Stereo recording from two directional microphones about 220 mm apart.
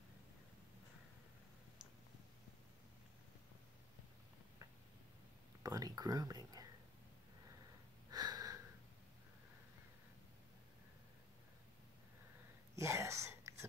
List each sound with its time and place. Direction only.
5.6 s whispering: 15° right (ahead or behind)
8.1 s a sound: 15° right (ahead or behind)
12.7 s whispering: 15° right (ahead or behind)